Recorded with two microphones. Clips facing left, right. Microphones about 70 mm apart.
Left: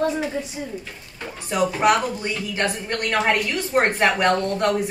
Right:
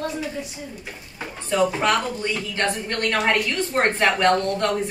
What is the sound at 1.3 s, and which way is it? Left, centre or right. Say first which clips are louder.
A woman's voice: right 1 dB; centre.